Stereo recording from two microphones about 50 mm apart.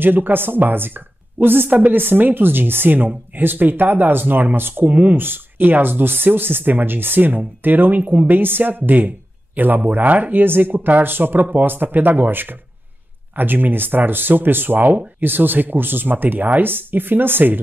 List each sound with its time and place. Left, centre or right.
0.0 s speech: right